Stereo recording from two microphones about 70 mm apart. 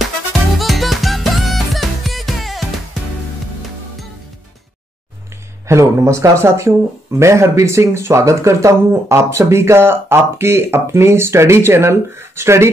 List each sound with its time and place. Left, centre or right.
0.6 s music: centre
5.7 s speech: right